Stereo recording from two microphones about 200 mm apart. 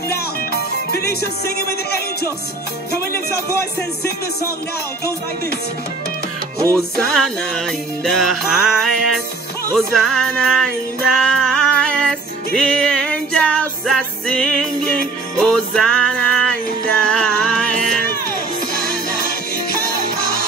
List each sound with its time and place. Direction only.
0.5 s music: 50° left (ahead or behind)
6.8 s music: 5° left (ahead or behind)
11.1 s a sound: 5° left (ahead or behind)
12.5 s music: 5° left (ahead or behind)